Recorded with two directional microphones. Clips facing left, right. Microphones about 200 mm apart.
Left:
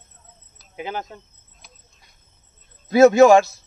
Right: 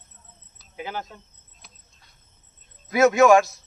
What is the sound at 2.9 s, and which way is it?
Speech, 30° left (ahead or behind).